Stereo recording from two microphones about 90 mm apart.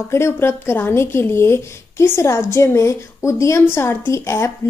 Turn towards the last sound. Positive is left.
turn(degrees=30)  # may be behind; listen again after turning